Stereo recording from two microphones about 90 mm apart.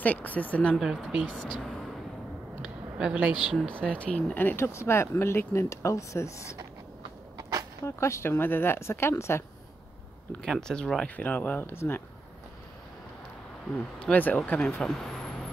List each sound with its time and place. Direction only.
0.0 s speech: 20° left (ahead or behind)
0.7 s speech: centre (ahead or behind)
3.0 s speech: 10° right (ahead or behind)
4.0 s speech: 15° left (ahead or behind); by 6.4 s 35° left (ahead or behind)
7.3 s a sound: 40° right (ahead or behind)
7.8 s speech: 30° left (ahead or behind)
10.4 s speech: 5° left (ahead or behind); by 12.0 s 25° left (ahead or behind)
14.1 s speech: 15° left (ahead or behind)
14.8 s speech: 5° left (ahead or behind)